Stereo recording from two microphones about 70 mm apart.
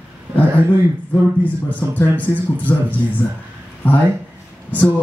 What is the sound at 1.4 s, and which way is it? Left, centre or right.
Speech, left.